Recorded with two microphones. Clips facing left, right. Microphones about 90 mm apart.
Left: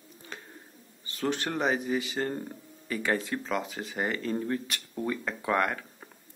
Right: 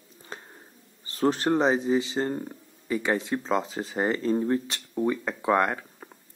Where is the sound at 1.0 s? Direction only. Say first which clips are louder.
Right 6 dB; 35° right (ahead or behind).